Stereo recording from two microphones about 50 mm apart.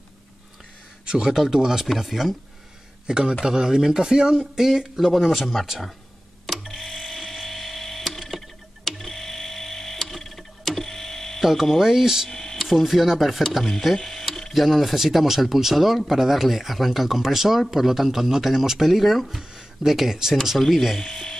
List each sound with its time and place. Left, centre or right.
1.0 s speech: centre
3.1 s speech: centre
6.7 s a sound: centre
11.4 s speech: centre
12.3 s a sound: centre
12.6 s speech: centre